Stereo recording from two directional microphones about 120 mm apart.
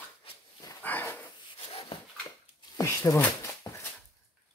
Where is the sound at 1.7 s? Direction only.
55° left (ahead or behind).